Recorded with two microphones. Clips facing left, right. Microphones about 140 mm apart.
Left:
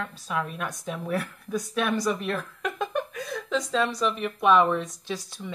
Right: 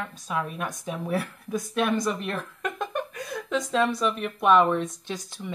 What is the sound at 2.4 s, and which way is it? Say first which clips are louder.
Giggle: left 1 dB; centre (ahead or behind).